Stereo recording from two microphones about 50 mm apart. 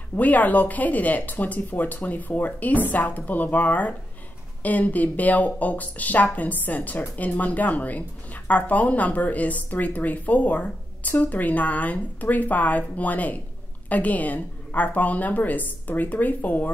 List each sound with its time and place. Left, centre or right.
0.1 s a woman's voice: left